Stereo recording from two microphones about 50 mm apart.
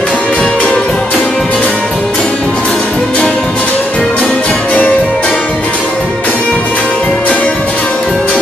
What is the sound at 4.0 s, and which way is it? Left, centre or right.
Music, left.